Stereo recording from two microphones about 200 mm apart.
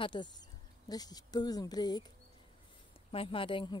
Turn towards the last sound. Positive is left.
turn(degrees=25)  # may be behind; listen again after turning